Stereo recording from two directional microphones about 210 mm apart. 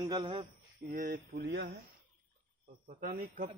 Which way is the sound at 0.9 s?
40° right (ahead or behind).